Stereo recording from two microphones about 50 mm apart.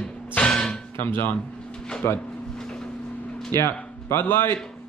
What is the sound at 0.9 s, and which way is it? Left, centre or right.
Speech, left.